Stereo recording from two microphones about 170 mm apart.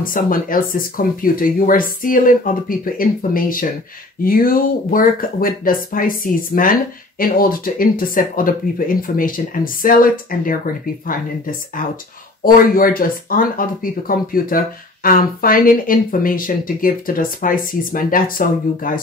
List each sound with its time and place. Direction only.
0.0 s speech: 55° left (ahead or behind)
12.4 s speech: 55° left (ahead or behind)